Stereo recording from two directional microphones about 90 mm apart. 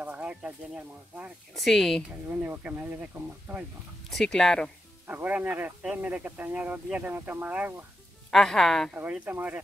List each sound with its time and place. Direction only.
0.0 s a sound: 15° right (ahead or behind)
1.5 s speech: 5° left (ahead or behind)
2.4 s speech: 20° right (ahead or behind)
4.1 s speech: 5° left (ahead or behind)
5.0 s speech: 20° right (ahead or behind)
8.3 s speech: 5° left (ahead or behind)
8.9 s speech: 20° right (ahead or behind)